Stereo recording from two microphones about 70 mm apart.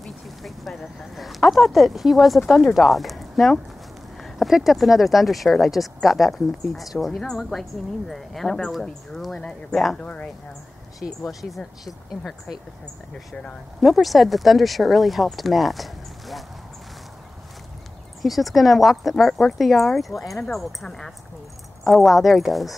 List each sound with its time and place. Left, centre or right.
0.0 s speech: centre
9.9 s speech: centre
11.0 s speech: centre
13.7 s speech: centre
18.2 s speech: centre